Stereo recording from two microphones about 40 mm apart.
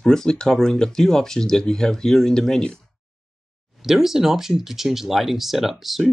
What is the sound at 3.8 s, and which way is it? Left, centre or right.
Speech, centre.